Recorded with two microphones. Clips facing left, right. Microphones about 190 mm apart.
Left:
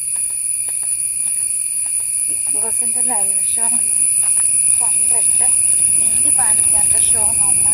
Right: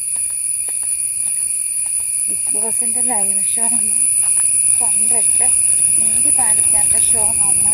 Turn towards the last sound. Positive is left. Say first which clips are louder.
# right 2 dB
turn(degrees=-5)  # may be behind; listen again after turning